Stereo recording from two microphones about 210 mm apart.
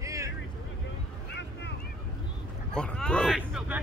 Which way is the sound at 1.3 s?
55° left (ahead or behind).